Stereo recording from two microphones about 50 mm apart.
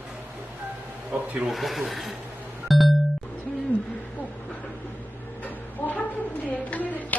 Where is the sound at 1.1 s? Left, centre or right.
Right.